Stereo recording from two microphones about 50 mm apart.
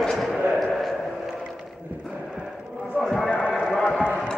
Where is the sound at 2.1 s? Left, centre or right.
Centre.